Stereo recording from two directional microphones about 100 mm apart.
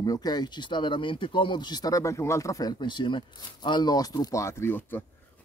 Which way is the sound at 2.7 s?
50° left (ahead or behind).